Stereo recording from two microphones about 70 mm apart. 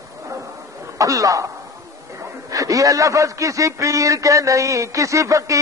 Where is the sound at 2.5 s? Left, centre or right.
Right.